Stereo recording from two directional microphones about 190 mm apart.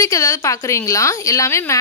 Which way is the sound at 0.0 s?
15° left (ahead or behind).